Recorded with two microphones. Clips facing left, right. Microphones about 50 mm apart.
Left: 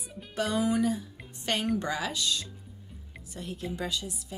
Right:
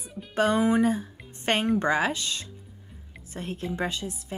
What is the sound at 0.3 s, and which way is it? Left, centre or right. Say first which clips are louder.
Speech: right 5 dB; right.